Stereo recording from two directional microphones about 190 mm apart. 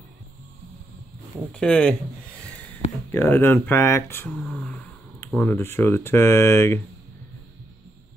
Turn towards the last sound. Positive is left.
turn(degrees=15)  # may be behind; listen again after turning